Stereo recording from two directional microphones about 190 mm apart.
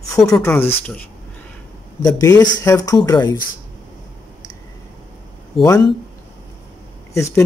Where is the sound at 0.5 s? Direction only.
5° left (ahead or behind).